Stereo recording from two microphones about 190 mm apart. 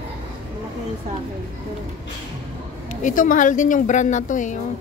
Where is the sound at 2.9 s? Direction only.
45° left (ahead or behind).